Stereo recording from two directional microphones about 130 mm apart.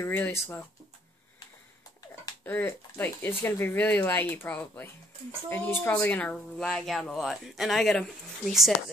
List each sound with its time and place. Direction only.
0.0 s speech: 15° left (ahead or behind)
2.4 s speech: 15° left (ahead or behind); by 8.7 s centre (ahead or behind)